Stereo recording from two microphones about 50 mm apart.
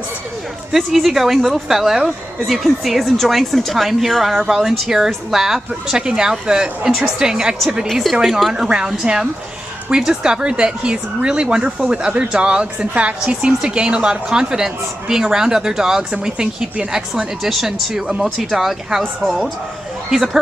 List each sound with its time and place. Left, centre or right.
0.7 s speech: centre
7.8 s speech: centre